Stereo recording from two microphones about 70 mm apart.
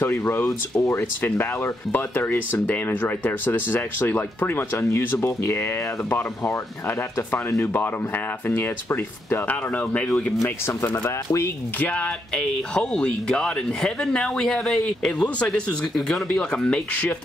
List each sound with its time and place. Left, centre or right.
0.0 s speech: left
0.5 s speech: left
1.2 s speech: left
7.6 s speech: left
11.1 s speech: left
11.8 s speech: centre